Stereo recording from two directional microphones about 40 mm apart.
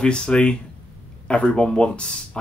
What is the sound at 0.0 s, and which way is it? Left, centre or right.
Speech, left.